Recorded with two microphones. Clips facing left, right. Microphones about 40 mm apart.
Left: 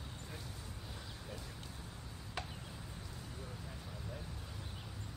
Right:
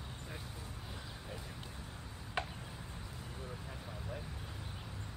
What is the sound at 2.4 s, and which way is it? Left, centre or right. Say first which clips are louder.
Chop: right 6 dB; right.